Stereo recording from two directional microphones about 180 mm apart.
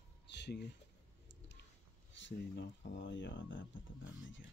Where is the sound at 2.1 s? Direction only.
85° left.